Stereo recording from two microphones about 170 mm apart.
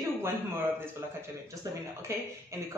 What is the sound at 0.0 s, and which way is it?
A man's voice, 15° right (ahead or behind).